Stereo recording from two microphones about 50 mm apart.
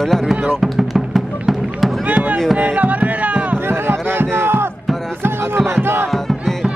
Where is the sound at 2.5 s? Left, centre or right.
Right.